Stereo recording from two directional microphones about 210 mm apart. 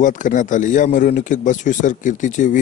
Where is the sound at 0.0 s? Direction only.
40° left (ahead or behind).